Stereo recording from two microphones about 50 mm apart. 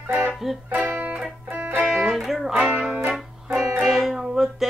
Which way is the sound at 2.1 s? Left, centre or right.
Centre.